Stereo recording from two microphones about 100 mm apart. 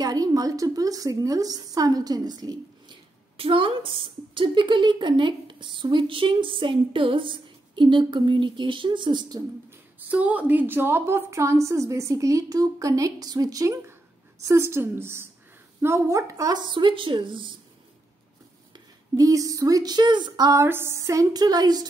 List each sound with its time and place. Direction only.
0.0 s a woman's voice: 40° right (ahead or behind)
3.3 s a woman's voice: 60° right (ahead or behind)
9.9 s a woman's voice: 15° right (ahead or behind); by 13.7 s 40° right (ahead or behind)
14.4 s a woman's voice: 25° right (ahead or behind)
16.6 s a woman's voice: 55° right (ahead or behind)
19.1 s a woman's voice: 35° right (ahead or behind)
20.5 s a woman's voice: 25° right (ahead or behind); by 21.8 s 40° right (ahead or behind)